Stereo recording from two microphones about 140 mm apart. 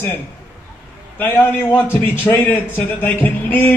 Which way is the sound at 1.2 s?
15° left (ahead or behind).